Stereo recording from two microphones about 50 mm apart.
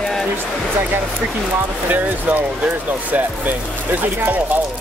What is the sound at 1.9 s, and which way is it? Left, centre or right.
Speech, right.